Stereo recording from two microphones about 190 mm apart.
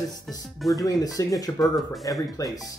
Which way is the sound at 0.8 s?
20° left (ahead or behind).